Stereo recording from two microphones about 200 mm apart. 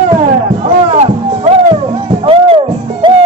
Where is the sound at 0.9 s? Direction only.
35° right (ahead or behind).